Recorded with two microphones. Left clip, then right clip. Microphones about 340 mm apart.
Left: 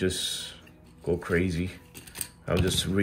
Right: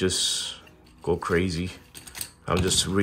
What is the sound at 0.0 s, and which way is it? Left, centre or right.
Speech, centre.